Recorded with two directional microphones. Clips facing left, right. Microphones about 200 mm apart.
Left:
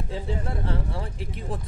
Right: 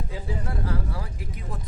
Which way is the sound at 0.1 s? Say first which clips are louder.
Left 3 dB; 25° left (ahead or behind).